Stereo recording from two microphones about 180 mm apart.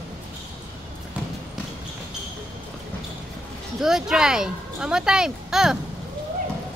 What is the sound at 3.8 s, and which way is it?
Speech, 5° right (ahead or behind).